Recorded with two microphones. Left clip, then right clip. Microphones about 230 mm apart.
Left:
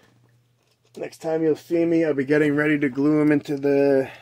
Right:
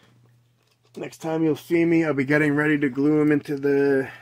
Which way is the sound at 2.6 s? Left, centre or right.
Centre.